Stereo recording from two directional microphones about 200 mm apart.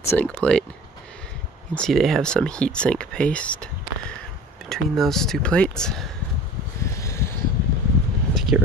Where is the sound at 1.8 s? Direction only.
Centre (ahead or behind).